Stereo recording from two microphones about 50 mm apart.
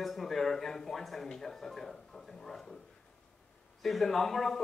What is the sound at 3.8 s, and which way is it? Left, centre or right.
Speech, centre.